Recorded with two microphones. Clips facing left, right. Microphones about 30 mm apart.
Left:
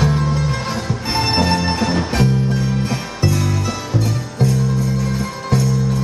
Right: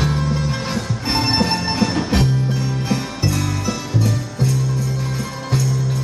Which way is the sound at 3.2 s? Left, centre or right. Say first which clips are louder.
Left 2 dB; centre.